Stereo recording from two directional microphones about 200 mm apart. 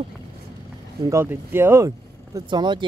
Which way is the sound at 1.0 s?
15° right (ahead or behind).